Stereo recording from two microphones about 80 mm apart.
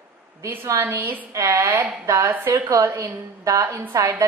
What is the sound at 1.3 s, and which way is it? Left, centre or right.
A woman's voice, right.